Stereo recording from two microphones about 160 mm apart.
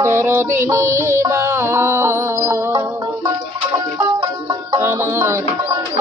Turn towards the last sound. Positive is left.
turn(degrees=-15)  # may be behind; listen again after turning